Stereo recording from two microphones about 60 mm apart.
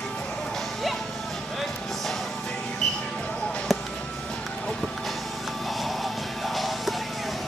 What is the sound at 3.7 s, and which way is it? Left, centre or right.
Music, centre.